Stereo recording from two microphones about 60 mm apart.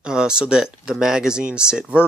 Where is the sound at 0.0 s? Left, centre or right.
Centre.